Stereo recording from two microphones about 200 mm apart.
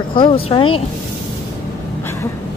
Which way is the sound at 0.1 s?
25° left (ahead or behind).